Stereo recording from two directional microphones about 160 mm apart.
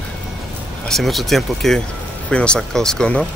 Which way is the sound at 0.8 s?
Centre (ahead or behind).